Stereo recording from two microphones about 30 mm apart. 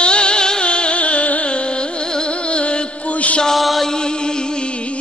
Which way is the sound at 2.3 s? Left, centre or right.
Left.